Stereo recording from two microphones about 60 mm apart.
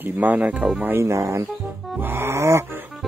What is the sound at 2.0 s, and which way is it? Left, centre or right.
Music, right.